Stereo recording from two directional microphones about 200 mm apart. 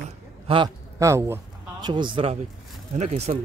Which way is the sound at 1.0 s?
15° right (ahead or behind).